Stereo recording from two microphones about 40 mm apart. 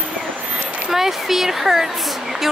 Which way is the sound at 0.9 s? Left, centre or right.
Centre.